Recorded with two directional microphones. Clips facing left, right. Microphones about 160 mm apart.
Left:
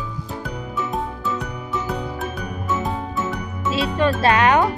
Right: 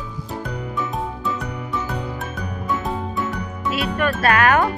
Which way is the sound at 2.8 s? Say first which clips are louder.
Even; centre (ahead or behind).